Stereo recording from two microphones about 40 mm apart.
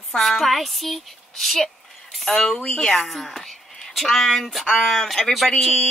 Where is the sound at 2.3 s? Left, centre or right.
Centre.